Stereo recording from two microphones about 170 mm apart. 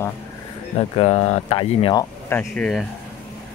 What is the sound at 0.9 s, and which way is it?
Speech, 40° left (ahead or behind).